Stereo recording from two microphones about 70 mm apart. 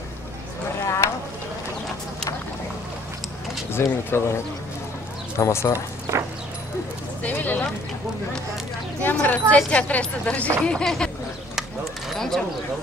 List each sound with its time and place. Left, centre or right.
0.8 s a sound: left
3.8 s speech: left
5.4 s speech: left
6.1 s horse: right
7.2 s speech: left
9.0 s speech: left
10.6 s speech: centre
12.1 s speech: centre